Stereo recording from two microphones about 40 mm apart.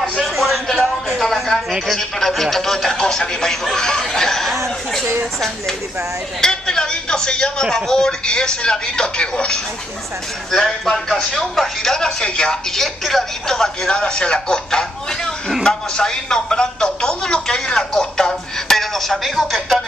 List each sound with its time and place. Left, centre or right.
0.1 s a man's voice: centre
0.7 s a sound: centre
1.2 s a woman's voice: centre
6.4 s speech: centre
10.5 s speech: centre
12.7 s speech: centre
18.8 s speech: centre